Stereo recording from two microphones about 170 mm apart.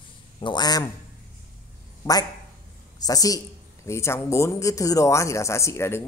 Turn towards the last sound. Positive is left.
turn(degrees=15)  # may be behind; listen again after turning